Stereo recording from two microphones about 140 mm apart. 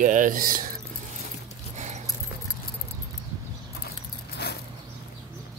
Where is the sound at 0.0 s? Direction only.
65° right (ahead or behind); by 0.7 s 90° right.